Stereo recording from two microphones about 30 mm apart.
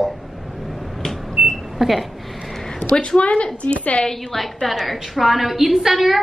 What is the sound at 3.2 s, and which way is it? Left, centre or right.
Speech, left.